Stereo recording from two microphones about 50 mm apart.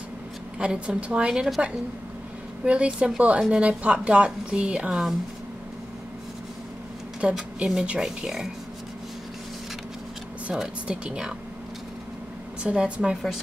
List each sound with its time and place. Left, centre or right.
0.6 s a woman's voice: centre
7.2 s a woman's voice: centre
10.5 s speech: centre
12.6 s a woman's voice: right